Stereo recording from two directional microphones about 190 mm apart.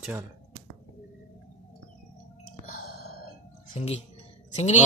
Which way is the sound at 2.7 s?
50° left (ahead or behind).